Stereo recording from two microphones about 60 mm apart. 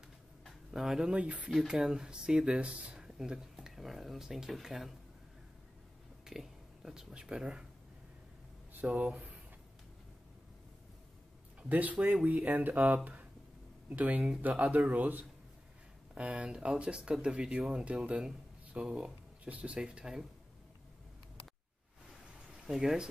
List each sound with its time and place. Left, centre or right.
0.5 s a sound: centre
1.1 s speech: right; by 4.9 s centre
6.2 s speech: centre
8.8 s speech: right
11.7 s speech: right
13.0 s a sound: right
13.8 s speech: right
16.2 s speech: centre
22.7 s speech: centre